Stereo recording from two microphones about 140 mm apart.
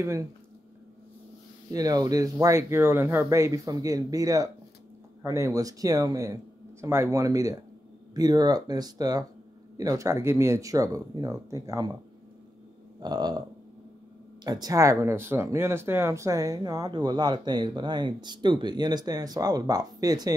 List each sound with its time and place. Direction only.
0.0 s speech: 20° right (ahead or behind)
1.7 s speech: 25° right (ahead or behind)
13.0 s speech: 30° right (ahead or behind)
14.4 s speech: 30° right (ahead or behind)